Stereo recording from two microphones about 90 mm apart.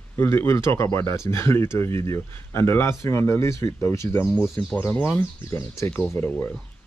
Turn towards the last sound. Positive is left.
turn(degrees=20)  # may be behind; listen again after turning